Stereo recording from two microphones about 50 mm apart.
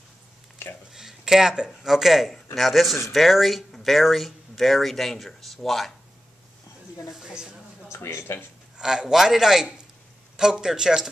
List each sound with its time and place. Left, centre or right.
0.6 s a sound: left
0.9 s speech: centre
7.1 s speech: centre
7.9 s speech: left
8.7 s speech: centre